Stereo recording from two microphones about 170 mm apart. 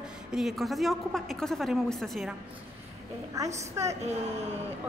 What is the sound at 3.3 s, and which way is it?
Speech, 20° right (ahead or behind).